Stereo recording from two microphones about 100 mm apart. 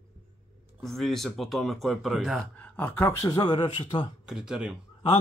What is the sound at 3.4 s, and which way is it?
Speech, 50° left (ahead or behind).